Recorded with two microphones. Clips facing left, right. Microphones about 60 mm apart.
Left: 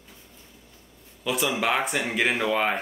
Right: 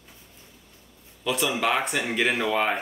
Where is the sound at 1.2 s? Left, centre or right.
Centre.